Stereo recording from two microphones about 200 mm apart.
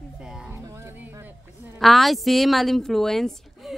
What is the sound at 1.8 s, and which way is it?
A woman's voice, centre (ahead or behind).